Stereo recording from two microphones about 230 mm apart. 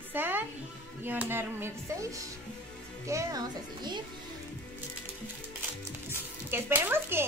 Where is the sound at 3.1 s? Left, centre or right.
Centre.